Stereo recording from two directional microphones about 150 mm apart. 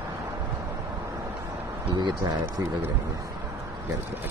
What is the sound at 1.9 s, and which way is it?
Speech, 30° right (ahead or behind).